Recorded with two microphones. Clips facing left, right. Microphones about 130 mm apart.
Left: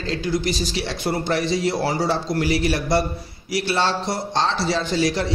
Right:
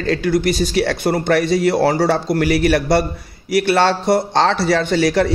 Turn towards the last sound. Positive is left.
turn(degrees=-60)  # may be behind; listen again after turning